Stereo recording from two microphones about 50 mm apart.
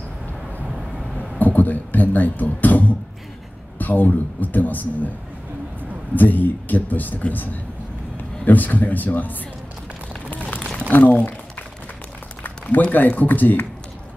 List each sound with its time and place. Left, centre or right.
1.4 s a man's voice: left
6.1 s a man's voice: left
10.9 s speech: left
12.9 s a man's voice: left